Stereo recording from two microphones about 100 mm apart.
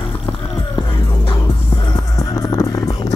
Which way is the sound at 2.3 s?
35° left (ahead or behind).